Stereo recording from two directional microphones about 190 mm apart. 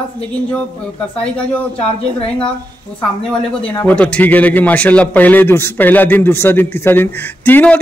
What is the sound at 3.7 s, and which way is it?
Speech, 10° left (ahead or behind).